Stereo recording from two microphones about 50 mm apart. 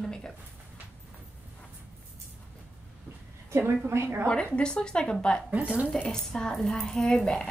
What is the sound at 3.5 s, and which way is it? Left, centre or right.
Speech, right.